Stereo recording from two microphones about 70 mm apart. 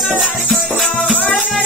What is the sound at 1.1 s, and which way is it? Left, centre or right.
Music, left.